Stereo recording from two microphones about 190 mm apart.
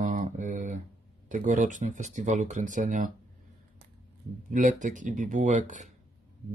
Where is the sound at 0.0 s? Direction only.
40° right (ahead or behind).